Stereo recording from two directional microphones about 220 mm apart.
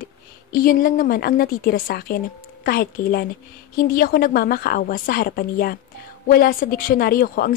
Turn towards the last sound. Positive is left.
turn(degrees=40)  # may be behind; listen again after turning